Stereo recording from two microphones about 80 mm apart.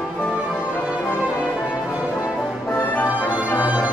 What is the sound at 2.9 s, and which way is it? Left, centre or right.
Music, left.